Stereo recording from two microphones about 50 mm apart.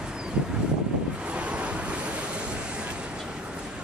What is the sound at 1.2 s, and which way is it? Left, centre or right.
Waves, right.